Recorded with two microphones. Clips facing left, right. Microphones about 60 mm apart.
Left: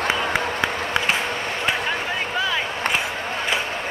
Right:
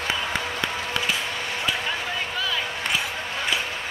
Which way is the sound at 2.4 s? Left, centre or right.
Left.